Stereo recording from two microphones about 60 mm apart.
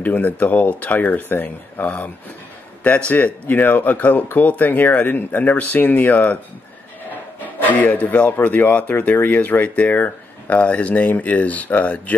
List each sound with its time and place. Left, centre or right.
0.0 s speech: left
3.4 s speech: left
7.5 s speech: left